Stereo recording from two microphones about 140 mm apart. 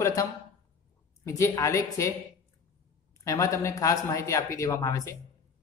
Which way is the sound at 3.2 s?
25° left (ahead or behind).